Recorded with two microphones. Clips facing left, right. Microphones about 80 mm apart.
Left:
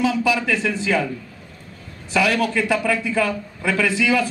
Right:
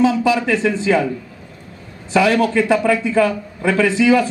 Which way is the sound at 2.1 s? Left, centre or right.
Right.